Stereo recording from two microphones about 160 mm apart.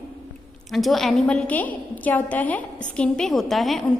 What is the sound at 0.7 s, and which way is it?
A woman's voice, centre (ahead or behind).